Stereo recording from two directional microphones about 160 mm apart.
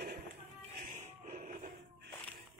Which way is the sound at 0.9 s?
55° right (ahead or behind).